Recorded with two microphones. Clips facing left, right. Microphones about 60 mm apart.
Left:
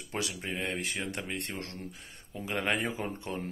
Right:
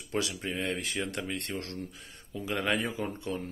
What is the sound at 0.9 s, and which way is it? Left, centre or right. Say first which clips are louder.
Speech: right 2 dB; left.